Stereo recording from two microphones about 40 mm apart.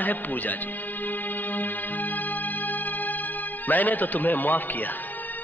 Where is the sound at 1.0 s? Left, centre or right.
Left.